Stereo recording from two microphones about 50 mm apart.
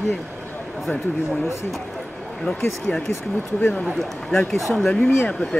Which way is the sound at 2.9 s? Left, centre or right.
Left.